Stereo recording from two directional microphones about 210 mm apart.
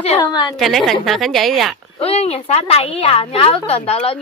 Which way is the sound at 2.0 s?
30° left (ahead or behind).